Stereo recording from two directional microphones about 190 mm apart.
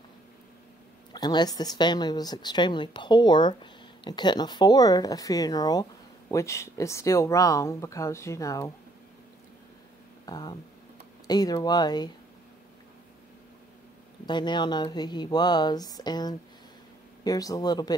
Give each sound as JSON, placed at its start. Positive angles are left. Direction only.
{"t": 1.1, "sound": "a woman's voice", "side_deg": 20}
{"t": 10.2, "sound": "a woman's voice", "side_deg": 20}
{"t": 14.2, "sound": "a woman's voice", "side_deg": 25}